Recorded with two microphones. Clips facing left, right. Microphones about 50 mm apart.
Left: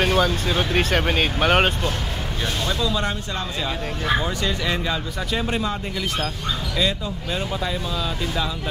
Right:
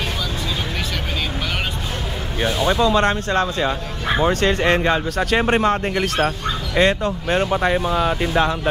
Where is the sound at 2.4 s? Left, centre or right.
Right.